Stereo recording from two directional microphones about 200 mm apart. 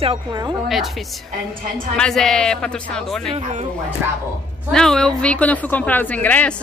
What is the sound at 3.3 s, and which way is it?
Speech, 35° right (ahead or behind).